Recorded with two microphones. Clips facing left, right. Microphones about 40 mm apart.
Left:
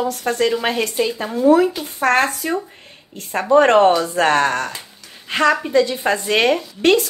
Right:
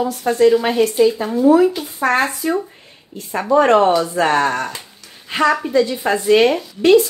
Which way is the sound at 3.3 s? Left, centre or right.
Left.